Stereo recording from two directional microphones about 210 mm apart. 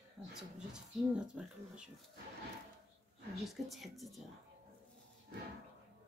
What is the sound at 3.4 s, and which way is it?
Speech, centre (ahead or behind).